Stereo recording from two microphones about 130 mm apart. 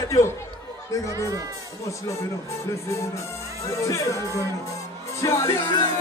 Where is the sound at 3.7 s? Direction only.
25° left (ahead or behind).